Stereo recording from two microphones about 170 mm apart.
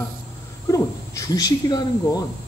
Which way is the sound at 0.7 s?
20° left (ahead or behind).